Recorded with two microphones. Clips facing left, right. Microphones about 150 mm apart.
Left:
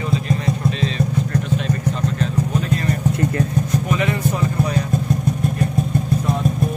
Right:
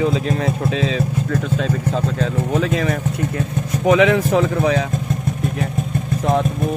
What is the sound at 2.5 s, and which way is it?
Vehicle, 90° right.